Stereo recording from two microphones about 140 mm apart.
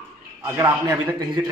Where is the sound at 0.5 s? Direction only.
25° right (ahead or behind).